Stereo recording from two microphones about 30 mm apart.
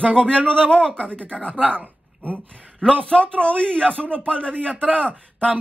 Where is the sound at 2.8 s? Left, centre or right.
Left.